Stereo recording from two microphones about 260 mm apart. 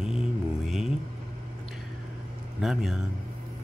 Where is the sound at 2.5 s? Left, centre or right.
Centre.